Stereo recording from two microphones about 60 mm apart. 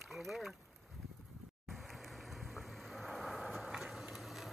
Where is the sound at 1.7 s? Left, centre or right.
Centre.